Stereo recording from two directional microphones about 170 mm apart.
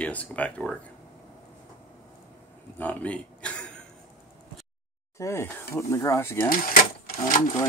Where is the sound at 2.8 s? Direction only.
10° left (ahead or behind).